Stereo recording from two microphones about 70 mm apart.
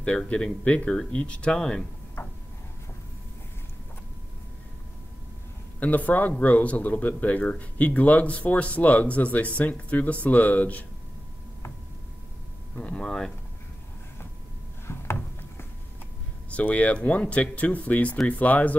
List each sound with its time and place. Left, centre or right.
0.0 s speech: centre
2.2 s a sound: left
5.8 s speech: left
12.7 s speech: centre
14.9 s a sound: left
16.5 s speech: centre